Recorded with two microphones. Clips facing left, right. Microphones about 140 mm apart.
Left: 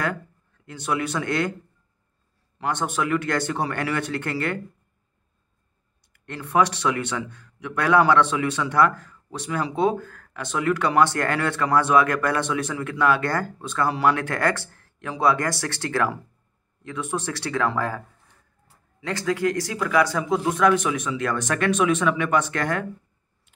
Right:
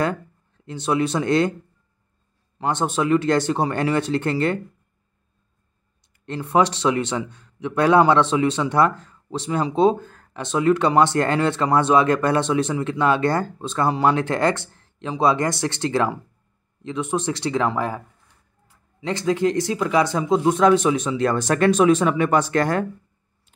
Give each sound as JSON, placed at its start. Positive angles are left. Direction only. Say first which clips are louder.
{"t": 0.7, "sound": "a man's voice", "louder": "right 5 dB", "side_deg": -25}
{"t": 2.6, "sound": "a man's voice", "louder": "right 4 dB", "side_deg": -25}
{"t": 6.2, "sound": "a man's voice", "louder": "right 2 dB", "side_deg": -25}